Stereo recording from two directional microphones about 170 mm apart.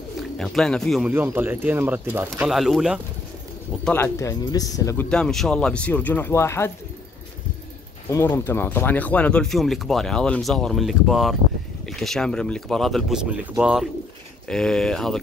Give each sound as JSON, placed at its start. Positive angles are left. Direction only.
{"t": 0.4, "sound": "speech", "side_deg": 0}
{"t": 1.1, "sound": "speech", "side_deg": -10}
{"t": 2.5, "sound": "speech", "side_deg": 0}
{"t": 3.8, "sound": "speech", "side_deg": 15}
{"t": 5.1, "sound": "speech", "side_deg": 5}
{"t": 8.1, "sound": "speech", "side_deg": 15}